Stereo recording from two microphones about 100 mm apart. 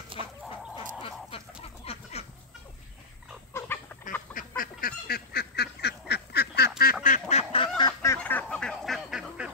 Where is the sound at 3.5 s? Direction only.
25° left (ahead or behind).